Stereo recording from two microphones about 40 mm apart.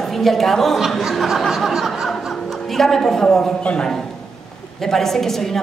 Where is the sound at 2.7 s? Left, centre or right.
Centre.